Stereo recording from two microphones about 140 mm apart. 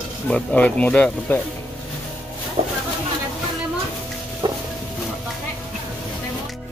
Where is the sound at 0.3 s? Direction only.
5° left (ahead or behind).